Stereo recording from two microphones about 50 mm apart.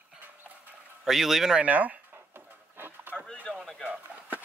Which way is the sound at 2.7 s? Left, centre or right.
Right.